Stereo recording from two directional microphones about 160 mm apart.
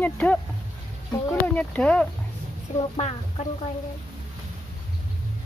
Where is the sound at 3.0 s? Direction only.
40° left (ahead or behind).